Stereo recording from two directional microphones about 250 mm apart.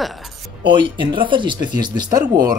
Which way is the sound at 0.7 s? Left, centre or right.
Centre.